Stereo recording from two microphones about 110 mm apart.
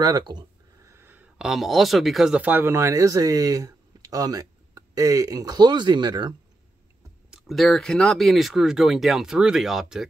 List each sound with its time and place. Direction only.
0.0 s speech: 40° right (ahead or behind)
0.8 s a sound: 20° right (ahead or behind)
1.4 s speech: centre (ahead or behind); by 6.3 s 40° right (ahead or behind)
7.2 s speech: 5° right (ahead or behind)